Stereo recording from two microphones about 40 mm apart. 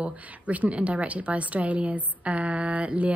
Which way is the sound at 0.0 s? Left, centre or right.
Right.